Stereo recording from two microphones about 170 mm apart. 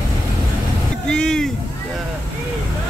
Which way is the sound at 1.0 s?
5° left (ahead or behind).